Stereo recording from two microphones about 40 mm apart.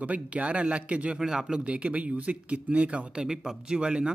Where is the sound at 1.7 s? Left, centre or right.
Right.